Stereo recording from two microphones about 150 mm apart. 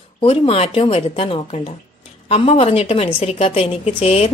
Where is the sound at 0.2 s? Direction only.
40° left (ahead or behind).